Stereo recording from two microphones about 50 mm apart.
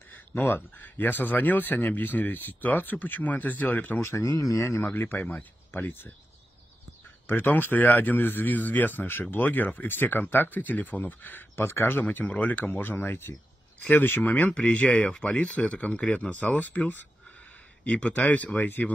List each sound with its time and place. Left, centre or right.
0.1 s speech: left
4.0 s speech: left
4.7 s speech: left
7.2 s speech: left
11.6 s speech: left
12.0 s speech: left
14.2 s speech: left